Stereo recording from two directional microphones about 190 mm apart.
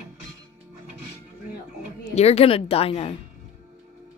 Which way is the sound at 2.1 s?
35° left (ahead or behind).